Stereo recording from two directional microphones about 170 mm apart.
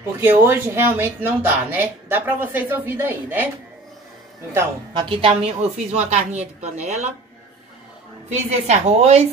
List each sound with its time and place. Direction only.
0.2 s speech: 15° right (ahead or behind)
5.2 s a woman's voice: 35° right (ahead or behind)
8.3 s a woman's voice: 40° right (ahead or behind)